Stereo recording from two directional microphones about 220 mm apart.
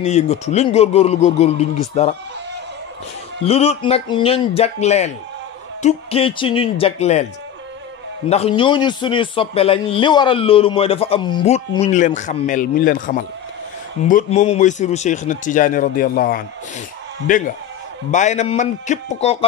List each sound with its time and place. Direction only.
0.0 s a man's voice: 30° left (ahead or behind)
3.4 s a man's voice: 30° left (ahead or behind)
8.3 s a man's voice: 25° left (ahead or behind)